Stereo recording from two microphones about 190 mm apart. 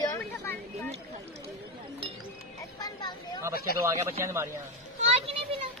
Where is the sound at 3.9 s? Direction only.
15° right (ahead or behind).